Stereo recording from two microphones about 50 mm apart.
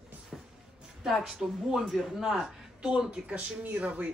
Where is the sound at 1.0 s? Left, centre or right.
Centre.